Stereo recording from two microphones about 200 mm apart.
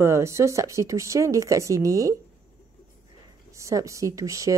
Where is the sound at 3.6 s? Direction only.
15° right (ahead or behind).